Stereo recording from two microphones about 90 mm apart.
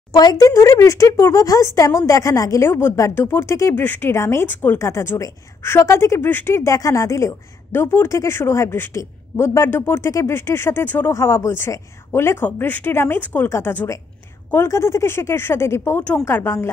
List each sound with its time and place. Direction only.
0.1 s a woman's voice: 50° left (ahead or behind); by 16.6 s 30° left (ahead or behind)